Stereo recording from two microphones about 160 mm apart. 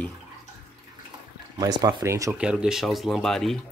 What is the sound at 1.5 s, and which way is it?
Speech, 25° right (ahead or behind).